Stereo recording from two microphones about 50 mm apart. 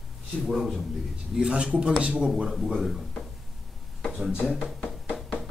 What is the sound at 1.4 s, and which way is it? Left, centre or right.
Speech, right.